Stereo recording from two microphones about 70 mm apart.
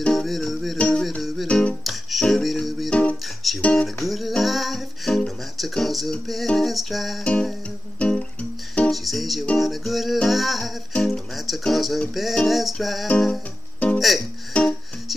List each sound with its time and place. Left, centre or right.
0.1 s music: centre
0.7 s music: centre
1.9 s music: centre
2.9 s music: centre
3.7 s music: centre
7.2 s music: centre
8.9 s music: centre
10.2 s a sound: centre
10.9 s music: centre
14.5 s music: centre